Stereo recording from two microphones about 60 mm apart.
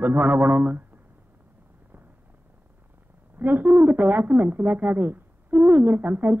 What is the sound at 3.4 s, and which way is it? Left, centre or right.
Speech, right.